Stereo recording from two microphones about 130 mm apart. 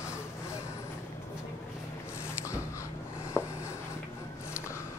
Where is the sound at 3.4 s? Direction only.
20° left (ahead or behind).